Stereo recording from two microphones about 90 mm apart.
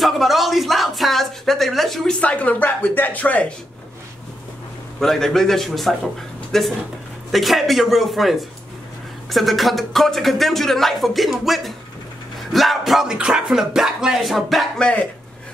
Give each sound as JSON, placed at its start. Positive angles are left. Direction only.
{"t": 0.0, "sound": "speech", "side_deg": 0}
{"t": 2.1, "sound": "speech", "side_deg": 15}
{"t": 5.0, "sound": "speech", "side_deg": 5}